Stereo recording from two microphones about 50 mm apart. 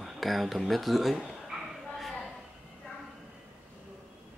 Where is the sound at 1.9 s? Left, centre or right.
Centre.